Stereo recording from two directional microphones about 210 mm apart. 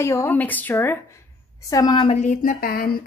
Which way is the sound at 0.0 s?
15° left (ahead or behind).